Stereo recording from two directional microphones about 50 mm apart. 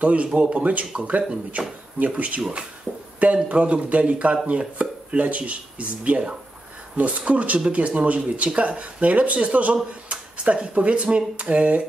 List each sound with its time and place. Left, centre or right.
0.0 s speech: right
3.4 s speech: right